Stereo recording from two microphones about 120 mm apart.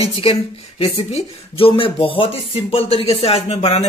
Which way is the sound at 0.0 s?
55° left (ahead or behind).